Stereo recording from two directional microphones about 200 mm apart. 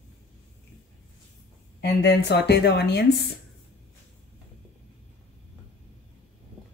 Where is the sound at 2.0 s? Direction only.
55° left (ahead or behind).